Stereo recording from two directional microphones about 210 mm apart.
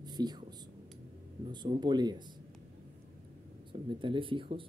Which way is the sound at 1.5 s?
20° right (ahead or behind).